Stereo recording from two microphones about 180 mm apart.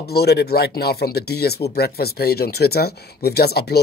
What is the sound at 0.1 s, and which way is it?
Speech, 65° left (ahead or behind).